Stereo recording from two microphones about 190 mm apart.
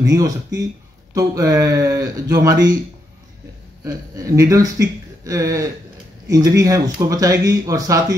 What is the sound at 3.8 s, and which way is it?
Speech, 20° right (ahead or behind).